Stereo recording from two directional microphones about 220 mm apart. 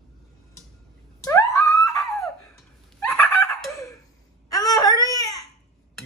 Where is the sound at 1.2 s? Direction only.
10° left (ahead or behind).